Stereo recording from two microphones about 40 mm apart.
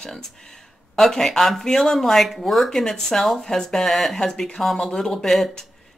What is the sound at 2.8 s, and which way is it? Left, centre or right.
Speech, centre.